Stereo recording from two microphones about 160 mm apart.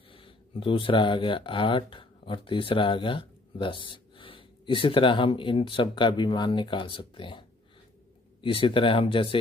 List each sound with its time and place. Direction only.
0.1 s speech: 35° left (ahead or behind)